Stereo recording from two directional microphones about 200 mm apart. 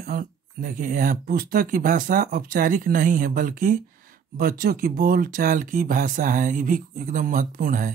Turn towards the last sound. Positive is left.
turn(degrees=-40)  # may be behind; listen again after turning